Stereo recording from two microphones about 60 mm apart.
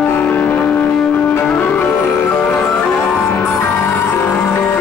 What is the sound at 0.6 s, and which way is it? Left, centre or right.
Music, centre.